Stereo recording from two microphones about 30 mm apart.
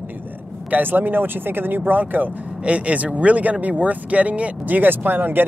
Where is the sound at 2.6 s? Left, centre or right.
Right.